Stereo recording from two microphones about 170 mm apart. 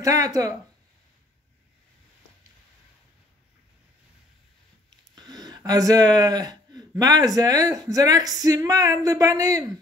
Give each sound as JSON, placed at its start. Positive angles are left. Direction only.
{"t": 0.0, "sound": "speech", "side_deg": -20}
{"t": 5.1, "sound": "a sound", "side_deg": -25}
{"t": 7.0, "sound": "speech", "side_deg": -20}